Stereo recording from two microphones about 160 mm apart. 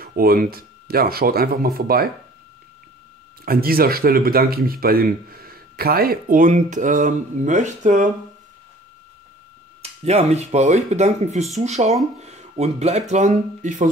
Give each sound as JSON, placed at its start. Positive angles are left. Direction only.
{"t": 0.0, "sound": "speech", "side_deg": -70}
{"t": 3.4, "sound": "speech", "side_deg": -70}
{"t": 9.8, "sound": "speech", "side_deg": -45}